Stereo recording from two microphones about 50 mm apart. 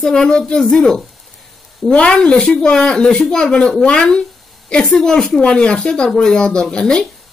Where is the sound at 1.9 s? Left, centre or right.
Left.